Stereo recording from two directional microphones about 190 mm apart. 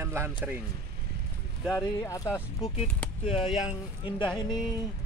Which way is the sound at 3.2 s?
25° left (ahead or behind).